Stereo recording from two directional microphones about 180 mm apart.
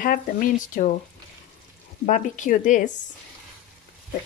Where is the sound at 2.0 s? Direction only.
45° left (ahead or behind).